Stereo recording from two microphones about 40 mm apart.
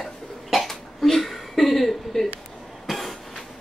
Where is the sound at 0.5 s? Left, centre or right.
Centre.